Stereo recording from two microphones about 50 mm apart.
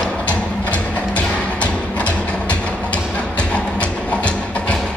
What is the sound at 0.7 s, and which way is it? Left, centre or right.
Music, left.